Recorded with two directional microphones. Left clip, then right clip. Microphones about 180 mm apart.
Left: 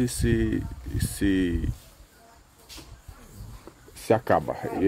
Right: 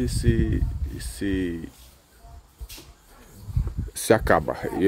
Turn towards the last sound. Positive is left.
turn(degrees=-20)  # may be behind; listen again after turning